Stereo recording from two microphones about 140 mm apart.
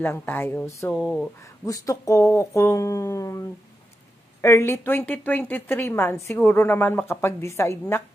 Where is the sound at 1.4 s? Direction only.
25° left (ahead or behind).